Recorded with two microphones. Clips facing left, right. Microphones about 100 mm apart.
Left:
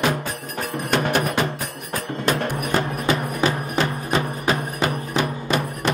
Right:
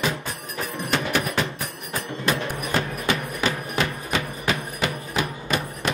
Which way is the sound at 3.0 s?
35° left (ahead or behind).